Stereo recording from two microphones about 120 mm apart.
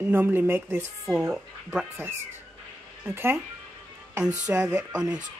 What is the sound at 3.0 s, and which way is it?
Speech, 20° right (ahead or behind).